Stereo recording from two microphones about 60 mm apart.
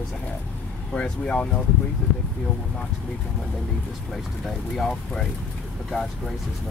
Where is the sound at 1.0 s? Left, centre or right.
Left.